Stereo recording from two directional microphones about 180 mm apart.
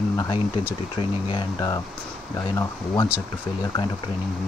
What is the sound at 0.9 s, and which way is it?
Speech, 25° left (ahead or behind).